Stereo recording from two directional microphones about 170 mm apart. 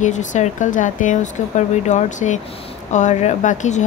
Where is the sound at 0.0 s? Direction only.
45° left (ahead or behind).